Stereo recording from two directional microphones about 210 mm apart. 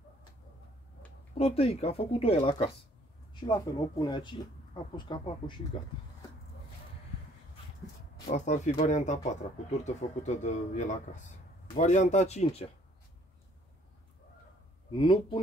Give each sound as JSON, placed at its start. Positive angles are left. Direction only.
{"t": 1.3, "sound": "speech", "side_deg": 30}
{"t": 8.3, "sound": "speech", "side_deg": 35}
{"t": 14.9, "sound": "speech", "side_deg": 25}